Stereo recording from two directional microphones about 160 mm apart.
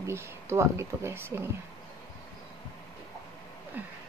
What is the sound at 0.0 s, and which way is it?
Speech, 15° right (ahead or behind).